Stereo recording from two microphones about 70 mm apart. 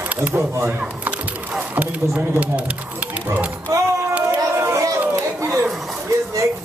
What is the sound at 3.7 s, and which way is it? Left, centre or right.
Speech, right.